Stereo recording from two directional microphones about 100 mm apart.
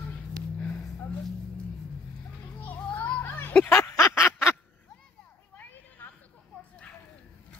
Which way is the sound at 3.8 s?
25° left (ahead or behind).